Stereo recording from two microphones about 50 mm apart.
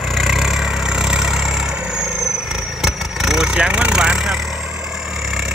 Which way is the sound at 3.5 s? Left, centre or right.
Right.